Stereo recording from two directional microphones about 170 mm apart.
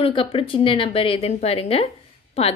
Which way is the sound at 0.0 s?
30° left (ahead or behind).